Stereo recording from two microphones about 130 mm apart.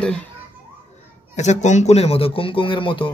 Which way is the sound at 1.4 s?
65° left (ahead or behind).